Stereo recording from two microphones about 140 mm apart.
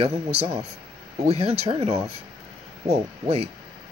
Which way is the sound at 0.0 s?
45° right (ahead or behind).